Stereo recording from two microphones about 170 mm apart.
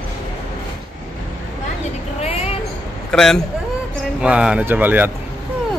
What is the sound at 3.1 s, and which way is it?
A man's voice, 5° left (ahead or behind).